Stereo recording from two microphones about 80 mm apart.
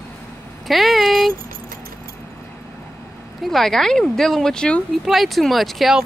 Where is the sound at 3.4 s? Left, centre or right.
Centre.